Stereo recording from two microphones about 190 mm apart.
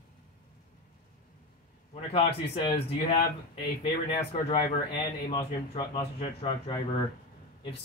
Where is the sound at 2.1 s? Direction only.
30° left (ahead or behind).